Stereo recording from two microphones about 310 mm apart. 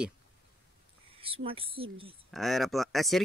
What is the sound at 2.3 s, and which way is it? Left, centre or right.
Speech, centre.